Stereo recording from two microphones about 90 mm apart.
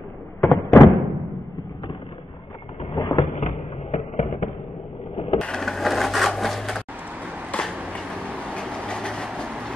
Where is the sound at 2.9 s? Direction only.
50° left (ahead or behind).